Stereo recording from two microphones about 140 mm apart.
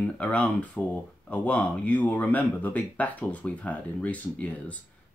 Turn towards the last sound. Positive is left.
turn(degrees=10)  # may be behind; listen again after turning